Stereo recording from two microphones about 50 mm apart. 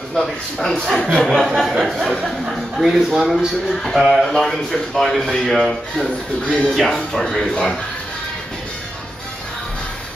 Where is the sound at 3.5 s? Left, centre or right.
Centre.